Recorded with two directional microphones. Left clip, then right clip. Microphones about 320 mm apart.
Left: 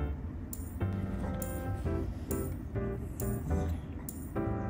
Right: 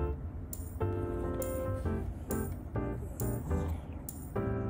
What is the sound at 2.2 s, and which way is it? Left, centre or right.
Music, centre.